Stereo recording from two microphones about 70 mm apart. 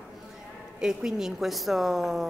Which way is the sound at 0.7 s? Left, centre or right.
Centre.